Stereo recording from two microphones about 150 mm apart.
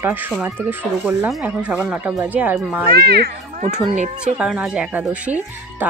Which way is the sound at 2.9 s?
90° right.